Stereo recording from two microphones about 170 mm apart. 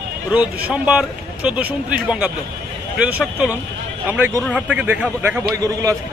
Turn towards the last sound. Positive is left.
turn(degrees=-20)  # may be behind; listen again after turning